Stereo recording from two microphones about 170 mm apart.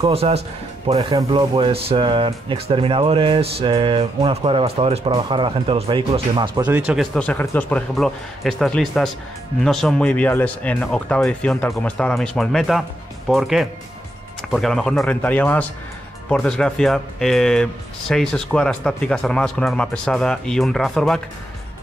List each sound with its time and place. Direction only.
0.1 s speech: 35° right (ahead or behind)
1.1 s speech: 25° right (ahead or behind)
6.6 s speech: 5° right (ahead or behind)
7.2 s speech: 10° left (ahead or behind)